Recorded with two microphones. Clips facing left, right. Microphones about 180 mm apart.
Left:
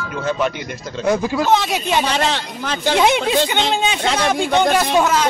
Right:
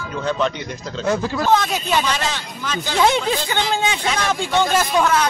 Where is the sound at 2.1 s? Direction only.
65° left (ahead or behind).